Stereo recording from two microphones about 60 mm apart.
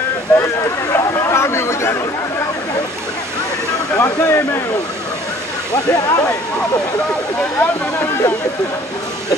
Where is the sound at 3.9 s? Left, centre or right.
Left.